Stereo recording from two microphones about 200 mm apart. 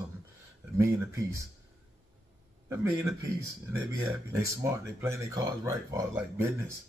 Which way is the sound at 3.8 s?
15° right (ahead or behind).